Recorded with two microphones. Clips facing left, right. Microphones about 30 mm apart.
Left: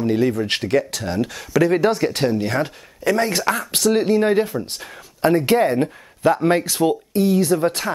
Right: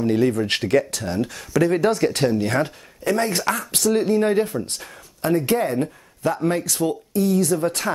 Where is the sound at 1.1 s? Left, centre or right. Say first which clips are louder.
Left 2 dB; left.